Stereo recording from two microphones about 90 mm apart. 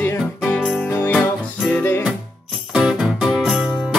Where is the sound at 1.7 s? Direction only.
25° left (ahead or behind).